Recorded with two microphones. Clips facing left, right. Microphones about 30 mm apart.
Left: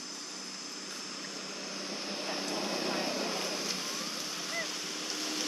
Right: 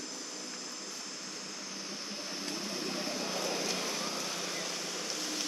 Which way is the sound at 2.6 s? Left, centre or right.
Left.